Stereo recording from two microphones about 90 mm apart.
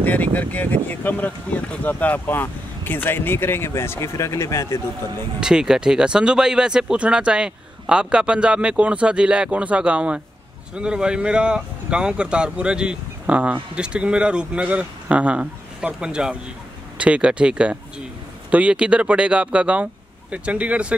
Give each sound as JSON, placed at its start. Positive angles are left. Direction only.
{"t": 0.0, "sound": "speech", "side_deg": 20}
{"t": 5.4, "sound": "speech", "side_deg": -5}